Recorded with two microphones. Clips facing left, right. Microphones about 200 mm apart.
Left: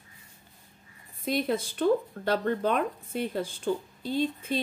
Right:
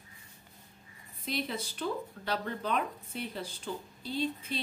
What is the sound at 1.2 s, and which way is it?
Speech, 50° left (ahead or behind).